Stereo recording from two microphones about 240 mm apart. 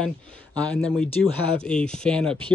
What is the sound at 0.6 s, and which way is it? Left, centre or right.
Speech, centre.